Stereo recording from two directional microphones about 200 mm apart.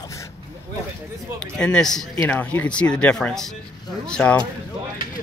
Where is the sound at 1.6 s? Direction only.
5° left (ahead or behind).